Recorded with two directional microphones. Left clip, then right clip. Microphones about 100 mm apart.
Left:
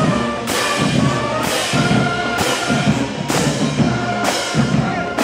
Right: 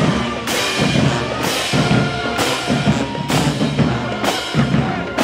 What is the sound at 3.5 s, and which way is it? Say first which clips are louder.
Music: even; 30° left (ahead or behind).